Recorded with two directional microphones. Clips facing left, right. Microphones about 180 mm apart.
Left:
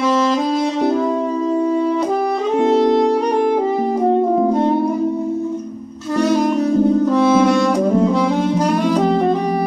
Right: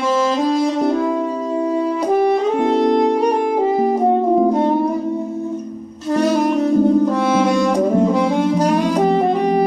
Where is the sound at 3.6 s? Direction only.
15° right (ahead or behind).